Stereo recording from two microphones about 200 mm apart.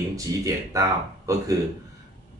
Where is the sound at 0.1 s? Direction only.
15° right (ahead or behind).